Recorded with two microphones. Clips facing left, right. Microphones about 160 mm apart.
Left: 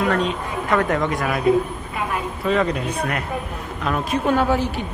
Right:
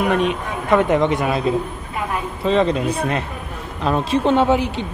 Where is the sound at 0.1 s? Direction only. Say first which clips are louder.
Right 2 dB; 20° right (ahead or behind).